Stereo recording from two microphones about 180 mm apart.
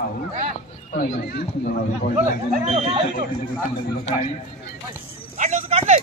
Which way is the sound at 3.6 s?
35° left (ahead or behind).